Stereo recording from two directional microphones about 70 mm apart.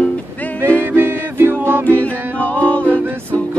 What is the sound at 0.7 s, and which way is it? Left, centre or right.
Music, right.